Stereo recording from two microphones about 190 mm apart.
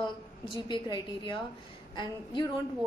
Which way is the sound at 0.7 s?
25° left (ahead or behind).